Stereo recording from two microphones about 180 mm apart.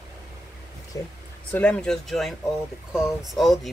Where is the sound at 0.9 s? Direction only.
20° left (ahead or behind).